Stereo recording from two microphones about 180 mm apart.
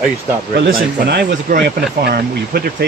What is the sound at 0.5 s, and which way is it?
Speech, 75° right (ahead or behind).